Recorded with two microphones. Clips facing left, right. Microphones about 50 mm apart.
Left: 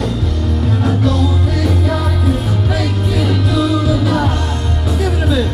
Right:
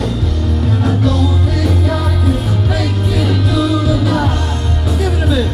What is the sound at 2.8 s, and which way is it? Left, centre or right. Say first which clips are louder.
Music: even; left.